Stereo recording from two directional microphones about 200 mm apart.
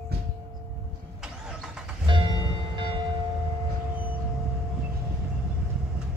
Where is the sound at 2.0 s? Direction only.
25° right (ahead or behind).